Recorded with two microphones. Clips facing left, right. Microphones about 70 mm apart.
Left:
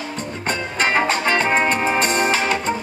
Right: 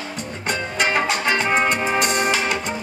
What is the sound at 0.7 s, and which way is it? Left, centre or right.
Music, left.